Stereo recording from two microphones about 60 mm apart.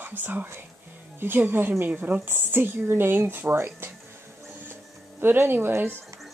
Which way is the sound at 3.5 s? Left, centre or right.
Right.